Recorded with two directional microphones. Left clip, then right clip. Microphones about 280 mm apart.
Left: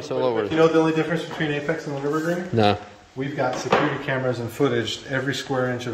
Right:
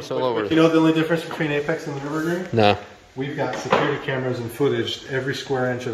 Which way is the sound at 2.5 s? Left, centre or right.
Centre.